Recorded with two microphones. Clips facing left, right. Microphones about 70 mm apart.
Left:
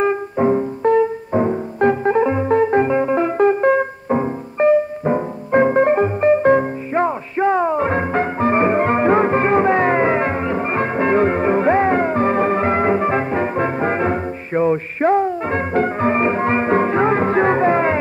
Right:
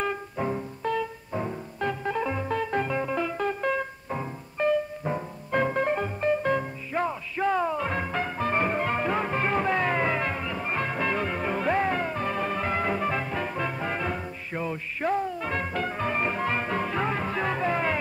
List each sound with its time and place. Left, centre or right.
0.0 s music: left